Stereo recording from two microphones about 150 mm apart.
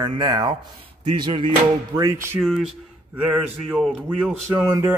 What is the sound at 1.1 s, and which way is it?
Music, 30° right (ahead or behind).